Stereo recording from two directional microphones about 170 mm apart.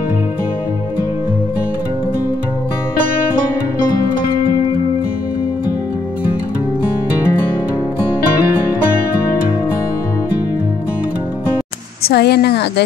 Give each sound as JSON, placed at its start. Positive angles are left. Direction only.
{"t": 12.0, "sound": "speech", "side_deg": 70}